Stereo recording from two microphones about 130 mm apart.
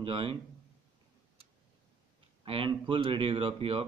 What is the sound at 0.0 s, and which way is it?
Speech, 40° right (ahead or behind).